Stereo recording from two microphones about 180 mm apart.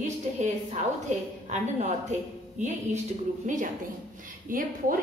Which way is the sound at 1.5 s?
40° right (ahead or behind).